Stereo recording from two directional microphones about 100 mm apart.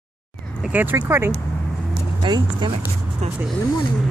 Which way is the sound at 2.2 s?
50° right (ahead or behind).